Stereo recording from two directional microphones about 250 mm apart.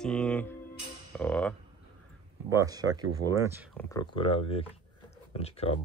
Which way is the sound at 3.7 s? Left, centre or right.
Centre.